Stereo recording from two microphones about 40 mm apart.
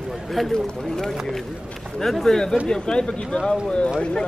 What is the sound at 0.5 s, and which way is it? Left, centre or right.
Speech, centre.